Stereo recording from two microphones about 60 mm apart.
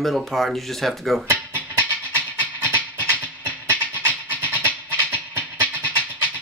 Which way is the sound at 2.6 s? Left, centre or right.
Right.